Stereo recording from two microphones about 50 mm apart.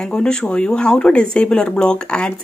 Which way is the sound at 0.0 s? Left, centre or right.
Centre.